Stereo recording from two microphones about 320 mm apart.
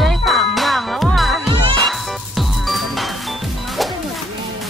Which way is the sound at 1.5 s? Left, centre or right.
Centre.